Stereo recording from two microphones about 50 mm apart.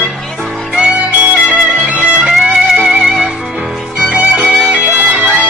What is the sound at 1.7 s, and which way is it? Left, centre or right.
Music, right.